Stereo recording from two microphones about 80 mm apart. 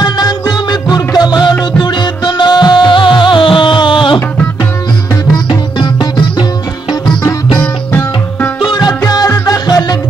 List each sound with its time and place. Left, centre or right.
0.0 s music: left
5.5 s music: left
7.6 s sitar: left
8.6 s music: left